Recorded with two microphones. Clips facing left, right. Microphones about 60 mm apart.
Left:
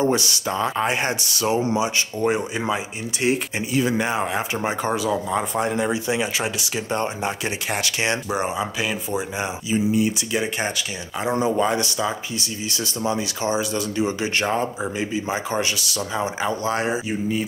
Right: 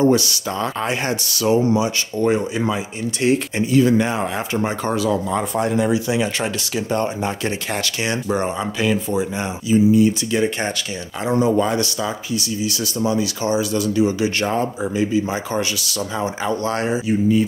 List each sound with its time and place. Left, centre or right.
0.0 s speech: left
2.1 s speech: centre
7.2 s speech: centre
11.3 s speech: left
14.4 s speech: left
16.2 s speech: centre